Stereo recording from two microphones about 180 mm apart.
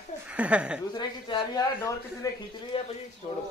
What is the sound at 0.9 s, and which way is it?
Speech, 25° left (ahead or behind).